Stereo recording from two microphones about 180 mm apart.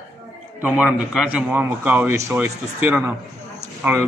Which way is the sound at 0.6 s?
5° right (ahead or behind).